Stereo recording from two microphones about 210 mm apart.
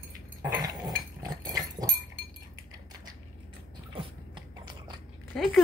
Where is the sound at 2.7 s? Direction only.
20° right (ahead or behind).